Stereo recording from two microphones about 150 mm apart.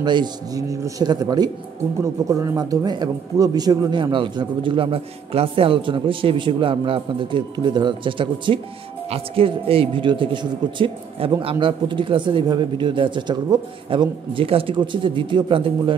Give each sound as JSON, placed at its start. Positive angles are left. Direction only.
{"t": 0.0, "sound": "speech", "side_deg": -30}